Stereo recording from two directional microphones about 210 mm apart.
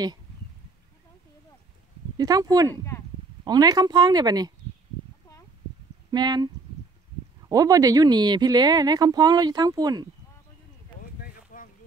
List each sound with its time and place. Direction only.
2.1 s speech: 20° right (ahead or behind)
2.7 s speech: 15° left (ahead or behind)
3.4 s speech: 20° right (ahead or behind)
6.1 s speech: 20° right (ahead or behind)
11.0 s boat: 40° left (ahead or behind)